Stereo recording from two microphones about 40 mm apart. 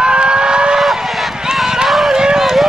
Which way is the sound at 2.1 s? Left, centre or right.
Centre.